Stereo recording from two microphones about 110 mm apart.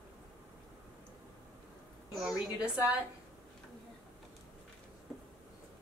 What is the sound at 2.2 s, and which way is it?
Speech, 5° right (ahead or behind).